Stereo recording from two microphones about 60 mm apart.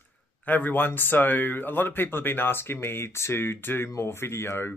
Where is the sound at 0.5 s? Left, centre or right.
Left.